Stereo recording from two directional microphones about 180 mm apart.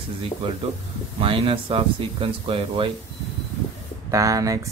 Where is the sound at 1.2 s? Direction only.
30° right (ahead or behind).